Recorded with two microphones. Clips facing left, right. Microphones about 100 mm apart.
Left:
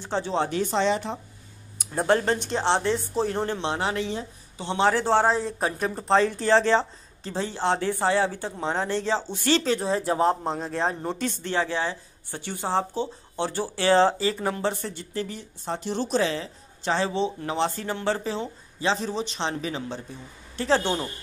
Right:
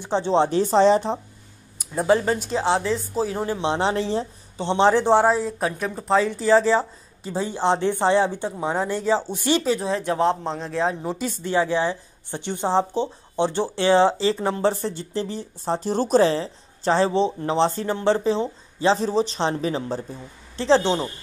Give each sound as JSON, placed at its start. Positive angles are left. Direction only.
{"t": 0.0, "sound": "speech", "side_deg": -25}
{"t": 2.1, "sound": "speech", "side_deg": -5}
{"t": 3.7, "sound": "speech", "side_deg": -30}
{"t": 9.8, "sound": "speech", "side_deg": 0}
{"t": 20.5, "sound": "speech", "side_deg": -25}